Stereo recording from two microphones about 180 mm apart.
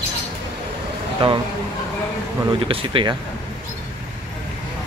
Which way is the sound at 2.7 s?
30° right (ahead or behind).